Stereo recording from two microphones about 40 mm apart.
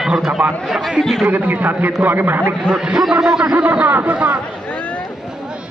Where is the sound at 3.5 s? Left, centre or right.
Right.